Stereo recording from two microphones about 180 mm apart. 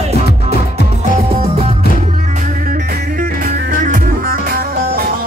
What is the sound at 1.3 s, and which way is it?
Music, 35° right (ahead or behind).